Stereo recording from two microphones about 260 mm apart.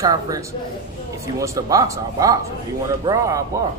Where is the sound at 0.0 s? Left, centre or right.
Centre.